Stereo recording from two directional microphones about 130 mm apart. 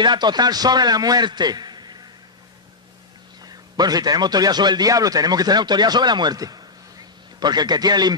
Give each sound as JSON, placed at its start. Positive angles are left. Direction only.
{"t": 0.0, "sound": "a man's voice", "side_deg": -35}
{"t": 3.4, "sound": "a man's voice", "side_deg": -30}